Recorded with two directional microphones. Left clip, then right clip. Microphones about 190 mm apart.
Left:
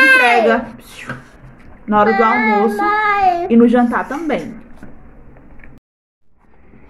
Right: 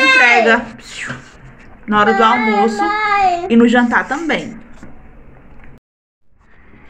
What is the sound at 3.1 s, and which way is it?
Child singing, 50° left (ahead or behind).